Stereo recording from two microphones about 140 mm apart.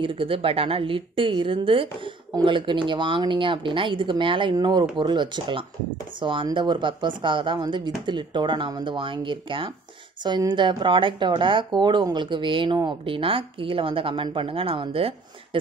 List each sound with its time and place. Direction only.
0.0 s speech: 40° right (ahead or behind)